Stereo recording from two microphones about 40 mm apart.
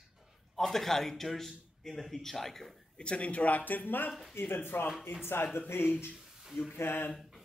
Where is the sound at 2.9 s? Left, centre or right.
Left.